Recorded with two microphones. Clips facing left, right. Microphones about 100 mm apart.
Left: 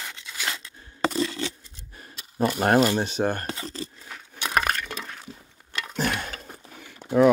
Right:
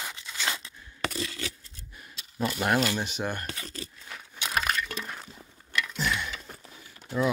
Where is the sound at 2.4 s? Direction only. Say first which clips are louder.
Left 6 dB; 40° left (ahead or behind).